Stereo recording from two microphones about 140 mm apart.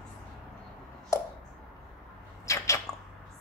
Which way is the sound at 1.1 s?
25° left (ahead or behind).